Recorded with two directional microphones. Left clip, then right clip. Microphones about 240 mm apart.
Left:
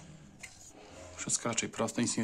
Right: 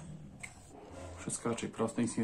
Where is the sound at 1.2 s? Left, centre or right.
Left.